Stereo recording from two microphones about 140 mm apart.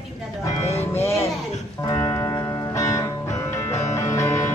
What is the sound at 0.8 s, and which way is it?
Speech, 15° left (ahead or behind).